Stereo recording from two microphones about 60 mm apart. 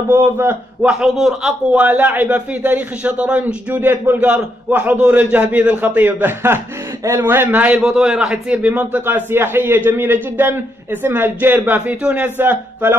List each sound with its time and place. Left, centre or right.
0.1 s a man's voice: right
0.8 s a man's voice: centre
1.8 s a man's voice: right
3.7 s a man's voice: right
7.6 s a man's voice: centre
9.0 s a man's voice: right
12.4 s a man's voice: right